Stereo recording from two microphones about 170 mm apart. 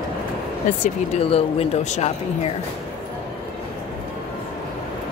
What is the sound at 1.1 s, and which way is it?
Speech, 35° left (ahead or behind).